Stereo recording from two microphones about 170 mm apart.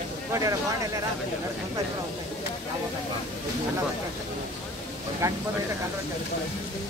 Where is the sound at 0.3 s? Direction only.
20° right (ahead or behind).